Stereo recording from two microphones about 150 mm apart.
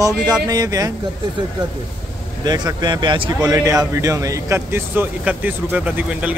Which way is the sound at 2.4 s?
30° right (ahead or behind).